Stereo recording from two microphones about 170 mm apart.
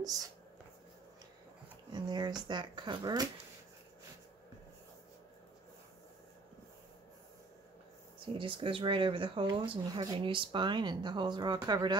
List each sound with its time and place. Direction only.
1.9 s speech: 25° right (ahead or behind)
8.3 s speech: 30° right (ahead or behind)